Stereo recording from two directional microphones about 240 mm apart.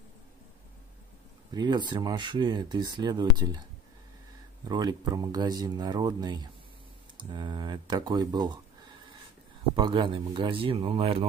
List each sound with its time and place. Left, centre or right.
1.5 s speech: centre
4.6 s speech: centre